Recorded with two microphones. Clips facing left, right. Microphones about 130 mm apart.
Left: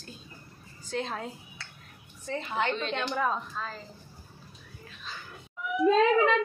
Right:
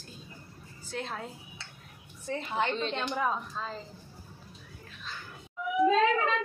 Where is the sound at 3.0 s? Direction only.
10° right (ahead or behind).